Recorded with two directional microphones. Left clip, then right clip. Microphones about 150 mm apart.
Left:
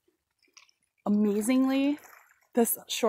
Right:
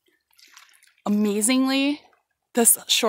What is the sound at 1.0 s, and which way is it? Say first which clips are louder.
Speech: right 4 dB; 5° right (ahead or behind).